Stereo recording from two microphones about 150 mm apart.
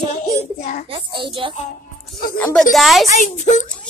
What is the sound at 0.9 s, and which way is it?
Speech, 35° right (ahead or behind).